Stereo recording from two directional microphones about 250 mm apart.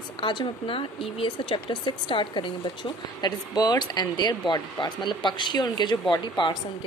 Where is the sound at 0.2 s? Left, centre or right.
Centre.